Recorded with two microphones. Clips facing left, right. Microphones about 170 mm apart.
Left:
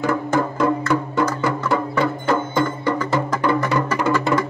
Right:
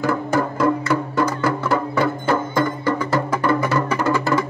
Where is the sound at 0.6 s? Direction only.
5° right (ahead or behind).